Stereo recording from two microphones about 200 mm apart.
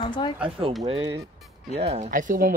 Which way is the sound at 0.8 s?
30° right (ahead or behind).